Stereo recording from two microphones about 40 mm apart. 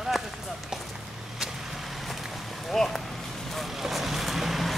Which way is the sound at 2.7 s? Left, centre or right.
Centre.